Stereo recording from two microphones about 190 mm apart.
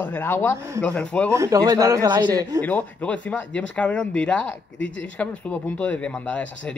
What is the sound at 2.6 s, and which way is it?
Speech, 10° left (ahead or behind).